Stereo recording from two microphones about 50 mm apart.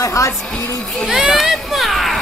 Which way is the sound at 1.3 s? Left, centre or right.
Centre.